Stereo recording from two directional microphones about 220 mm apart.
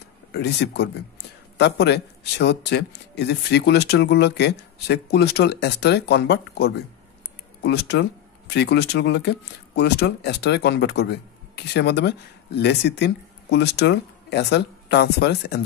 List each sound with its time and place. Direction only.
0.3 s speech: 50° left (ahead or behind)